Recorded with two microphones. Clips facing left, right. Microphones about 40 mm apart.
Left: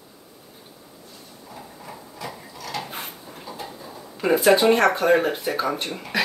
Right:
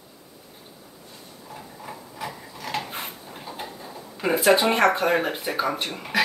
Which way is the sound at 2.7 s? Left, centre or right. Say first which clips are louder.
Right 2 dB; right.